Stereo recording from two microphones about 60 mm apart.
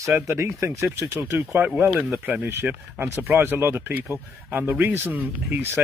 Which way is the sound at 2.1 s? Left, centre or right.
Right.